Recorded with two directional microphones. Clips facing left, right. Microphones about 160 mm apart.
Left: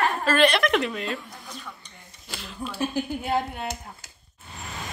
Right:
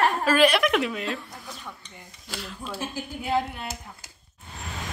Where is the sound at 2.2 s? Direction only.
Centre (ahead or behind).